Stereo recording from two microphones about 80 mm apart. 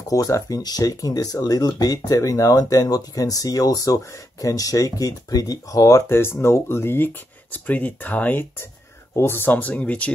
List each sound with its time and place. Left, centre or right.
0.1 s speech: left; by 10.1 s centre